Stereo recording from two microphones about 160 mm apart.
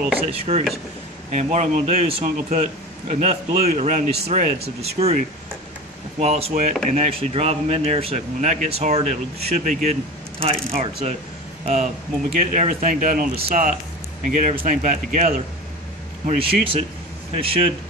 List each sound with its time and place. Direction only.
0.3 s a man's voice: 40° right (ahead or behind)
16.3 s speech: 35° right (ahead or behind)